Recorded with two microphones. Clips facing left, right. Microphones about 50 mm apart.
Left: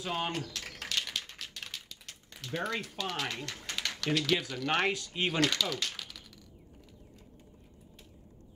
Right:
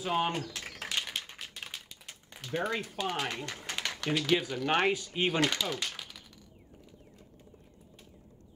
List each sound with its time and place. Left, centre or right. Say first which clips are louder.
0.0 s speech: right 4 dB; centre
0.6 s a sound: even; centre
3.0 s speech: right 2 dB; centre